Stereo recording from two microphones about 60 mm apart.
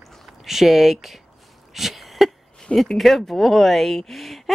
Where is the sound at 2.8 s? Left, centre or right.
Centre.